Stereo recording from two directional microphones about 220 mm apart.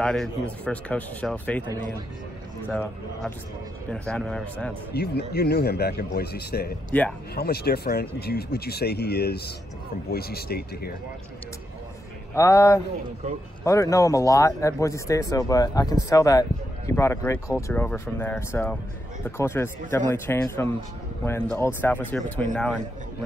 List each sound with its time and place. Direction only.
0.0 s speech: centre (ahead or behind)
2.7 s speech: 5° left (ahead or behind)
4.9 s speech: 45° left (ahead or behind)
6.9 s speech: 5° left (ahead or behind)
7.3 s speech: 45° left (ahead or behind)
12.4 s speech: 15° left (ahead or behind)